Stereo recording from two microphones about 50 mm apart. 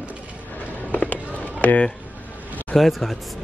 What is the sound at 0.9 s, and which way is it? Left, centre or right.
Run, left.